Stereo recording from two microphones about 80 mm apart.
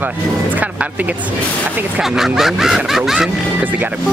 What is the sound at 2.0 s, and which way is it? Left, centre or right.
Speech, centre.